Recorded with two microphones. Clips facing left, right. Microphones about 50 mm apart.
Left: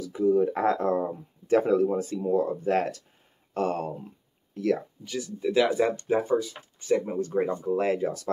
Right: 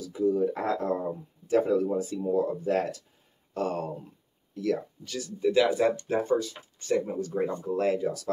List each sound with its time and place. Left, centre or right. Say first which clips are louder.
0.0 s speech: left 3 dB; left
5.0 s speech: left 3 dB; left
5.4 s speech: even; centre
7.2 s speech: left 3 dB; left
7.4 s speech: left 1 dB; left
7.9 s speech: left 1 dB; left